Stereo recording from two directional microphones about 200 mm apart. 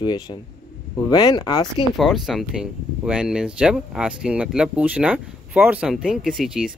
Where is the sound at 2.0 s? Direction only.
Centre (ahead or behind).